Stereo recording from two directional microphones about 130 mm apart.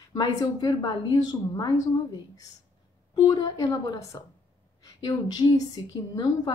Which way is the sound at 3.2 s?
30° left (ahead or behind).